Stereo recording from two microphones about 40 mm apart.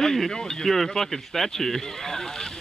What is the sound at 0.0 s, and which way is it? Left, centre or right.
Speech, centre.